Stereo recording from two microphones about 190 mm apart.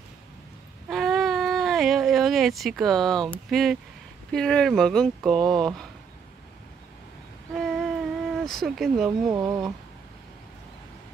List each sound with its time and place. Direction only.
0.8 s a sound: centre (ahead or behind)
3.4 s speech: centre (ahead or behind)
7.5 s humming: centre (ahead or behind)
8.5 s speech: centre (ahead or behind)
9.3 s speech: 20° right (ahead or behind)